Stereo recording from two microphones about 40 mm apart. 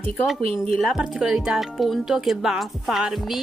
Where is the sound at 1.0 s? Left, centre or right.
Centre.